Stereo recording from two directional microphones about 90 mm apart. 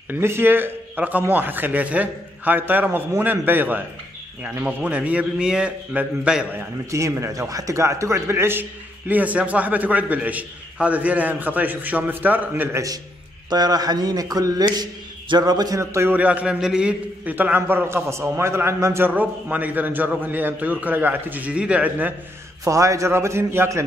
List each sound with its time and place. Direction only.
0.1 s a man's voice: 25° right (ahead or behind); by 6.4 s 10° right (ahead or behind)
6.9 s a man's voice: 35° right (ahead or behind)
12.7 s a man's voice: 40° right (ahead or behind)
14.6 s a man's voice: 55° right (ahead or behind); by 16.2 s 30° right (ahead or behind)
16.2 s a man's voice: 15° right (ahead or behind)
22.7 s a man's voice: 35° right (ahead or behind)